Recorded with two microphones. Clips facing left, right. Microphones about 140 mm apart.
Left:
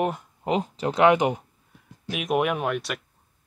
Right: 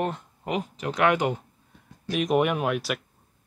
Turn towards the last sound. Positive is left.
turn(degrees=0)  # may be behind; listen again after turning